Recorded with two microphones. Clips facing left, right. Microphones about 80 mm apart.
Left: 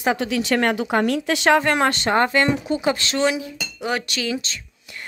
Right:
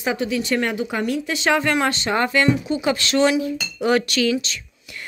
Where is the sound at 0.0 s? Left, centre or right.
Left.